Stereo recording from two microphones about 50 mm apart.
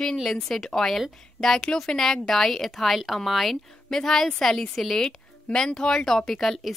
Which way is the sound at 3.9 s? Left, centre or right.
Centre.